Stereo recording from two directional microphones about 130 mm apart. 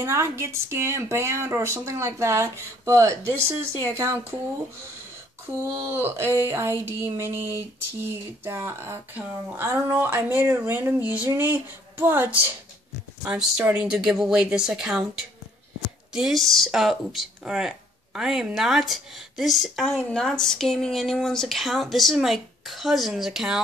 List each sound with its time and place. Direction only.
0.0 s speech: 20° right (ahead or behind)
5.5 s speech: 25° right (ahead or behind); by 15.0 s 5° right (ahead or behind)
16.1 s speech: 5° right (ahead or behind)